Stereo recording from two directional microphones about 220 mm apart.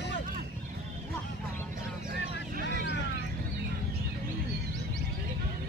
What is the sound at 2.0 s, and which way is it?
Vehicle, 40° right (ahead or behind).